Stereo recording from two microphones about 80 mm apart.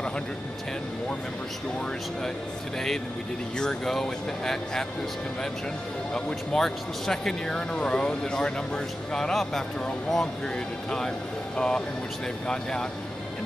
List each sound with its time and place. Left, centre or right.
3.5 s speech: centre
6.1 s speech: centre